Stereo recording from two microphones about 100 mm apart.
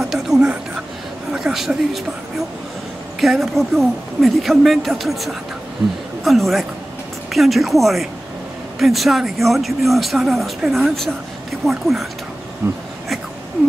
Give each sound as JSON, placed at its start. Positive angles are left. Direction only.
{"t": 0.0, "sound": "music", "side_deg": -5}
{"t": 1.3, "sound": "a woman's voice", "side_deg": -5}
{"t": 3.2, "sound": "speech", "side_deg": 0}
{"t": 12.6, "sound": "speech", "side_deg": -25}